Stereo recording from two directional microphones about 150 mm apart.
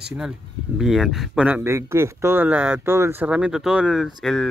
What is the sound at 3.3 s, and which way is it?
Speech, 5° right (ahead or behind).